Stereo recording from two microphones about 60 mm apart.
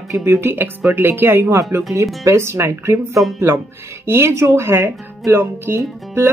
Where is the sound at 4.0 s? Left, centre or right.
Right.